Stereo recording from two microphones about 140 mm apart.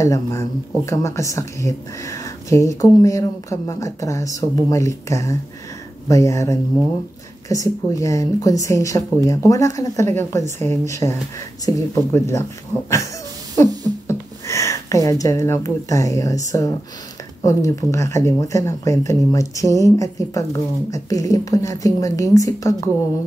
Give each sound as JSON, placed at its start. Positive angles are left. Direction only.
{"t": 0.0, "sound": "speech", "side_deg": 20}
{"t": 14.0, "sound": "speech", "side_deg": 20}